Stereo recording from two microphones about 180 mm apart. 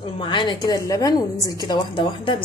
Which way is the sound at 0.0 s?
25° left (ahead or behind).